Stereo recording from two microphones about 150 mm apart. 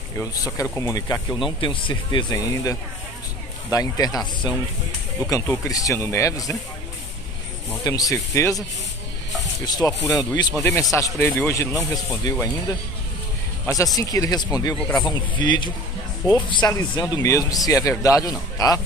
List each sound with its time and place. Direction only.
0.2 s speech: 25° left (ahead or behind)
1.6 s speech: 35° left (ahead or behind)
7.8 s speech: 25° left (ahead or behind)
9.7 s speech: 25° left (ahead or behind)
13.9 s speech: 25° left (ahead or behind)